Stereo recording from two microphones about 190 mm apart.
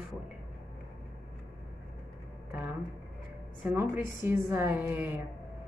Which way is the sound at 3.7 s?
15° right (ahead or behind).